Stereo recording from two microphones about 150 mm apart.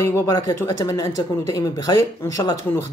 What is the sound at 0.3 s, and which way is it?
Speech, 25° left (ahead or behind).